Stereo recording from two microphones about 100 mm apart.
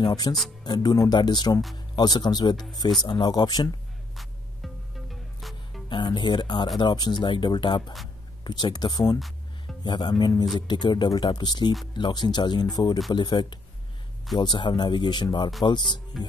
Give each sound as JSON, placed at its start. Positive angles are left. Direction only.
{"t": 0.0, "sound": "speech", "side_deg": 40}
{"t": 5.9, "sound": "speech", "side_deg": 50}
{"t": 16.1, "sound": "music", "side_deg": 0}